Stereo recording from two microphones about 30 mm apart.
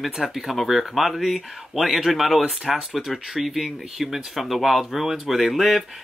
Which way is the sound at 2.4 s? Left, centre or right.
Centre.